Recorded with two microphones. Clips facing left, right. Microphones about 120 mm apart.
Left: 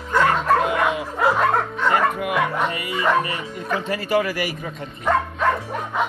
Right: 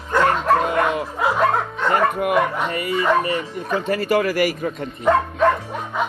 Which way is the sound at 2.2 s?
50° right (ahead or behind).